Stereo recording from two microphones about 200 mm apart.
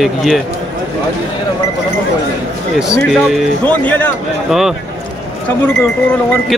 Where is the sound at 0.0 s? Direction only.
Centre (ahead or behind).